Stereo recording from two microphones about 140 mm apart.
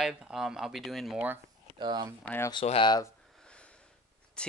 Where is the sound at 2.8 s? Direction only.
30° left (ahead or behind).